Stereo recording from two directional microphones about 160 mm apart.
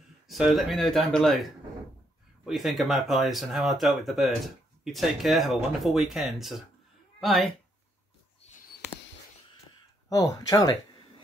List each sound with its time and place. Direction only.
0.3 s speech: centre (ahead or behind)
10.0 s speech: 20° left (ahead or behind)